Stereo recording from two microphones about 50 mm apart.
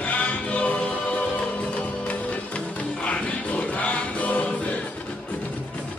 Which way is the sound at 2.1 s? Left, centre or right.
Left.